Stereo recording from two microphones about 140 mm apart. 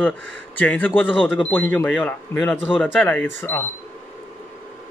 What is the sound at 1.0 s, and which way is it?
Speech, 5° right (ahead or behind).